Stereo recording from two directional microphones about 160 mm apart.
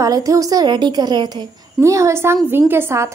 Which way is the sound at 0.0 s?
20° right (ahead or behind).